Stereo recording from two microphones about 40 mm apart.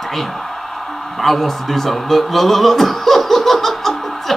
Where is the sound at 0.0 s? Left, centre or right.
Centre.